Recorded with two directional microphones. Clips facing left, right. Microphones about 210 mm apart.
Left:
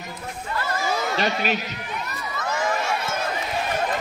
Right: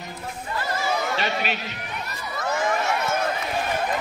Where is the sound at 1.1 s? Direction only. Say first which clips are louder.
Left 3 dB; 40° left (ahead or behind).